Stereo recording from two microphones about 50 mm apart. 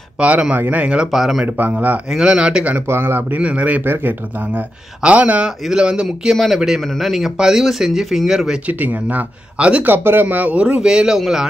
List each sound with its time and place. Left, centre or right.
0.2 s speech: right
1.1 s a man's voice: centre
1.4 s speech: right
2.0 s speech: centre
2.9 s speech: right
3.3 s speech: right
3.8 s speech: right
5.0 s speech: right
5.7 s speech: centre
6.3 s a man's voice: centre
8.6 s speech: right
9.6 s speech: right
9.8 s speech: right
10.2 s a man's voice: right; by 11.4 s centre